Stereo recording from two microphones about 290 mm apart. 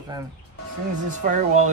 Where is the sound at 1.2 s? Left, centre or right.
Right.